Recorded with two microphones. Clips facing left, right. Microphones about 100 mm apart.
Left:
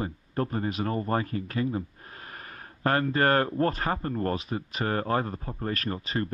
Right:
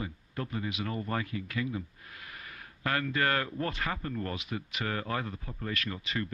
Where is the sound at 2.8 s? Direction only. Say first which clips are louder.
Left 6 dB; 40° left (ahead or behind).